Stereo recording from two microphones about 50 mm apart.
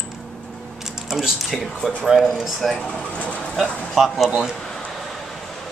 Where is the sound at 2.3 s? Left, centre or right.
Centre.